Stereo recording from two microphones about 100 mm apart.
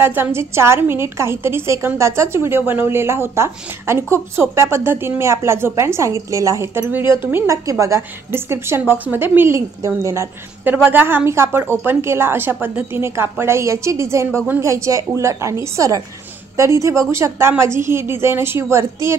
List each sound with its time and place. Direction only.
0.0 s a woman's voice: 25° right (ahead or behind)
7.4 s a woman's voice: 30° right (ahead or behind)
10.6 s a woman's voice: 20° right (ahead or behind)